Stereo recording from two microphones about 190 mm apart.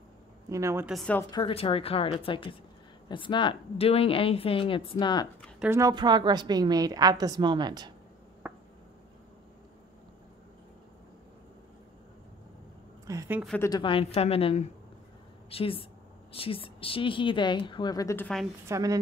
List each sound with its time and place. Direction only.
0.5 s a woman's voice: 15° right (ahead or behind)
0.8 s a woman's voice: 5° left (ahead or behind)
1.3 s a woman's voice: 25° left (ahead or behind)
5.6 s a woman's voice: 15° right (ahead or behind)
8.4 s a sound: 10° right (ahead or behind)
13.0 s a sound: 15° right (ahead or behind)
13.6 s a woman's voice: 20° left (ahead or behind)
18.7 s a woman's voice: 20° right (ahead or behind)